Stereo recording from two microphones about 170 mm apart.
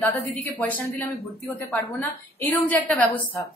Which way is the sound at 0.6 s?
10° left (ahead or behind).